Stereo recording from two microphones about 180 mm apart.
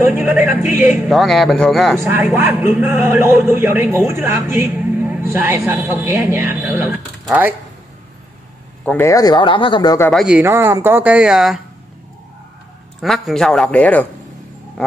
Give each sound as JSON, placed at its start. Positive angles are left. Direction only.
{"t": 0.0, "sound": "speech", "side_deg": -10}
{"t": 1.0, "sound": "speech", "side_deg": 0}
{"t": 2.0, "sound": "speech", "side_deg": -15}
{"t": 8.8, "sound": "speech", "side_deg": 15}
{"t": 10.1, "sound": "speech", "side_deg": -5}
{"t": 10.4, "sound": "speech", "side_deg": -15}
{"t": 13.0, "sound": "speech", "side_deg": 0}